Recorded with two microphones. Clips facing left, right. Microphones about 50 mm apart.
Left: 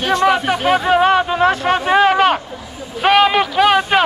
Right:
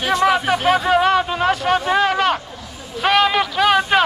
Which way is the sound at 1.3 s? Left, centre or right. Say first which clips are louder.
Left 3 dB; left.